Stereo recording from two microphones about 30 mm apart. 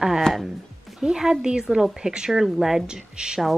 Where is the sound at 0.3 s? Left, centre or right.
Left.